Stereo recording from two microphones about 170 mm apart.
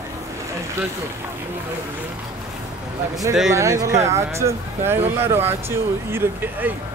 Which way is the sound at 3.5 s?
20° right (ahead or behind).